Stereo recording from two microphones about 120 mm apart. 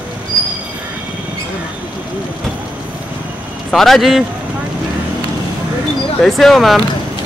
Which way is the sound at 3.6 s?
Centre (ahead or behind).